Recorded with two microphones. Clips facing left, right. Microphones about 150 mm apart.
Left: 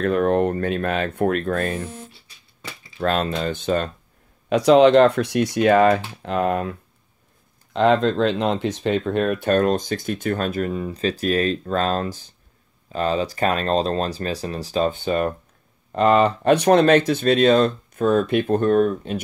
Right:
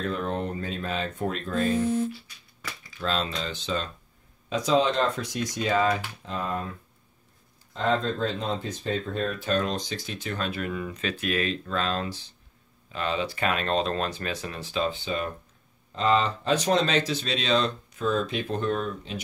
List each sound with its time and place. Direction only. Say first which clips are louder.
0.0 s speech: left 11 dB; 60° left (ahead or behind)
3.0 s speech: left 8 dB; 55° left (ahead or behind)
4.5 s speech: left 10 dB; 70° left (ahead or behind)
7.7 s speech: left 9 dB; 75° left (ahead or behind); by 19.2 s 50° left (ahead or behind)